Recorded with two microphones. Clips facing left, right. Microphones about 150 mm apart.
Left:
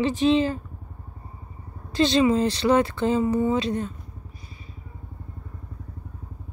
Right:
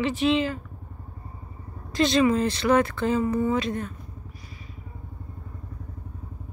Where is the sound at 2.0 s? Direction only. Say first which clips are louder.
Left 1 dB; 25° left (ahead or behind).